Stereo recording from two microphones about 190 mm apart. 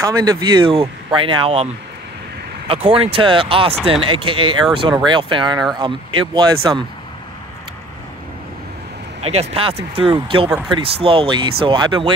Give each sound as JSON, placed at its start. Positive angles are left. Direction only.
{"t": 0.0, "sound": "speech", "side_deg": -20}
{"t": 2.7, "sound": "speech", "side_deg": -30}
{"t": 9.2, "sound": "speech", "side_deg": -35}